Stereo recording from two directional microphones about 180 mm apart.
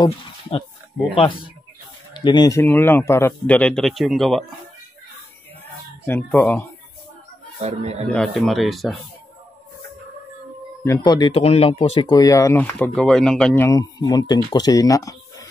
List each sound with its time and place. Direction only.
0.0 s speech: 30° left (ahead or behind)
2.1 s speech: 25° left (ahead or behind)
2.6 s speech: 10° left (ahead or behind)
6.0 s speech: 10° left (ahead or behind)
7.6 s a man's voice: 35° right (ahead or behind)
8.1 s speech: centre (ahead or behind)
11.0 s speech: 25° left (ahead or behind); by 13.7 s 5° left (ahead or behind)
13.7 s speech: 20° left (ahead or behind)